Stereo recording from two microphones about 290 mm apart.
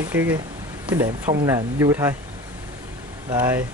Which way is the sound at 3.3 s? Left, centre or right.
Centre.